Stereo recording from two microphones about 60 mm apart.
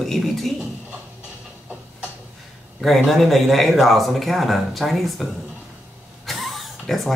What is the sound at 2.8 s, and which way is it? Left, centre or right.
Speech, centre.